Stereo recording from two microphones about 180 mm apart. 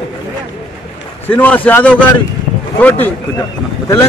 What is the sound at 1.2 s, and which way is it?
Speech, 10° left (ahead or behind).